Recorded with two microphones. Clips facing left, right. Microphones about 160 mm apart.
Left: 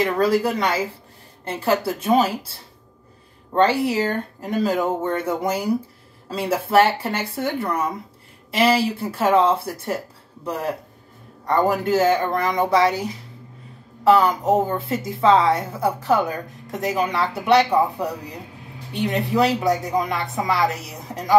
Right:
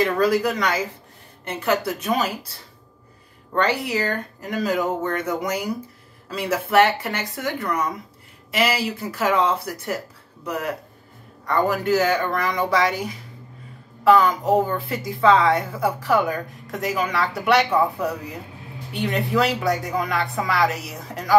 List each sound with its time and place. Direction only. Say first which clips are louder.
0.0 s a woman's voice: even; 25° left (ahead or behind)
3.5 s a woman's voice: left 4 dB; 25° left (ahead or behind)
14.0 s a woman's voice: even; 25° left (ahead or behind)
18.9 s a woman's voice: left 2 dB; 20° left (ahead or behind)